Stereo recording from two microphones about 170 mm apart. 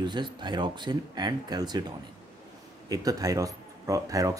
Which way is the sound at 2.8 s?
20° right (ahead or behind).